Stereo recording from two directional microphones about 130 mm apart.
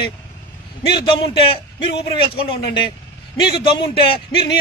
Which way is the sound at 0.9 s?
40° left (ahead or behind).